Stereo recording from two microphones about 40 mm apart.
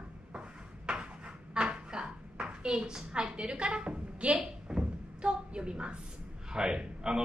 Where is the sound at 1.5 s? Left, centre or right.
Right.